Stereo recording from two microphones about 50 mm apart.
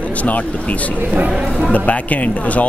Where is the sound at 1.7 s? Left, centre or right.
Left.